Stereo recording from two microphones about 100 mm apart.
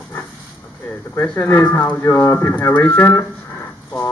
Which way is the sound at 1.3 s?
25° left (ahead or behind).